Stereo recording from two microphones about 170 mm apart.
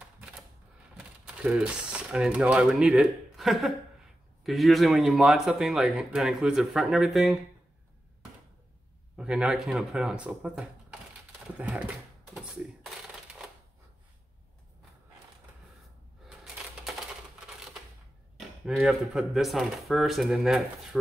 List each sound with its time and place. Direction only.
0.9 s speech: 5° right (ahead or behind)
9.1 s speech: 5° right (ahead or behind)
16.3 s typewriter: 5° right (ahead or behind)
18.8 s speech: 5° right (ahead or behind)